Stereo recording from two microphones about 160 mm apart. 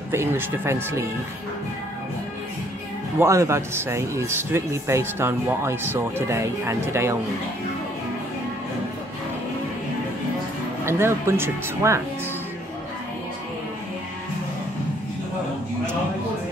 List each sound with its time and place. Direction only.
0.1 s a man's voice: 15° right (ahead or behind)
3.2 s a man's voice: 15° right (ahead or behind)
10.9 s a man's voice: 15° right (ahead or behind)